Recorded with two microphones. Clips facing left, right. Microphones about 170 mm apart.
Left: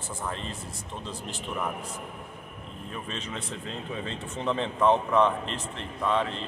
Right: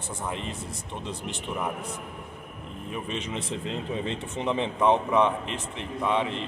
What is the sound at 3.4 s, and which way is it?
Speech, 25° right (ahead or behind).